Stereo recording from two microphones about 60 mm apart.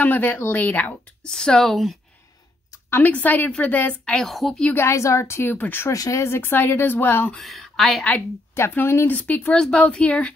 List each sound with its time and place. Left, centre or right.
0.0 s speech: left
1.2 s speech: centre
3.1 s a woman's voice: left
4.3 s a woman's voice: centre
4.7 s a woman's voice: left
5.5 s speech: left
5.9 s speech: left
6.2 s speech: left
7.3 s speech: centre
8.5 s a woman's voice: left
9.1 s a woman's voice: left
9.5 s speech: centre